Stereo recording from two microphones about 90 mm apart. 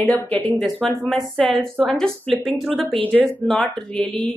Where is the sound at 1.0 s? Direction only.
5° left (ahead or behind).